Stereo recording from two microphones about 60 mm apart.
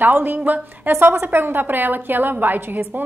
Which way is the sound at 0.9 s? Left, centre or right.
Right.